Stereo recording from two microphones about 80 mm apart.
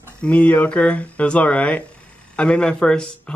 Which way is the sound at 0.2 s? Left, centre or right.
Centre.